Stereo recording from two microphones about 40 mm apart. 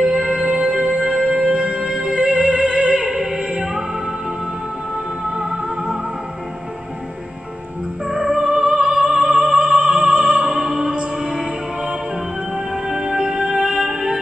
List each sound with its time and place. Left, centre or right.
0.0 s music: centre
1.1 s music: centre
1.4 s music: right
5.2 s music: centre
8.1 s music: centre